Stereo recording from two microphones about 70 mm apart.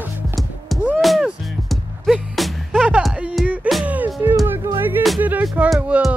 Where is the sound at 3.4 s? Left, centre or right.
Centre.